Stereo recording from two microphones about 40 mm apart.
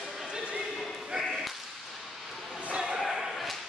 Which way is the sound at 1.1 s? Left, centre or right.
Centre.